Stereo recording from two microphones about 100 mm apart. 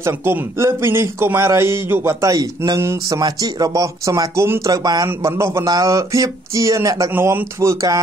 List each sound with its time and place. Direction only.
0.0 s a man's voice: 25° right (ahead or behind)
2.2 s speech: 35° right (ahead or behind)
5.0 s a man's voice: 30° right (ahead or behind)
7.1 s a man's voice: 20° right (ahead or behind)